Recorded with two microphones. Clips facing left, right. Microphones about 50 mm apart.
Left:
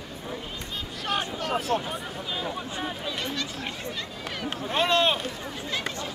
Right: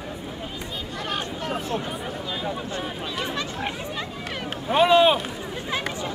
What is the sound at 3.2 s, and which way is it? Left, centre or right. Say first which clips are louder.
Chatter: right 4 dB; centre.